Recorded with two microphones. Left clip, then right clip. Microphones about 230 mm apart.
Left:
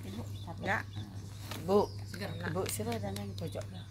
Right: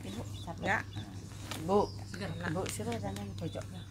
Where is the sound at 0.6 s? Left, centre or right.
Centre.